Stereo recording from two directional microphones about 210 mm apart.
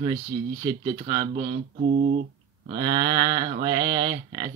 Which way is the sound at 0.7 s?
20° right (ahead or behind).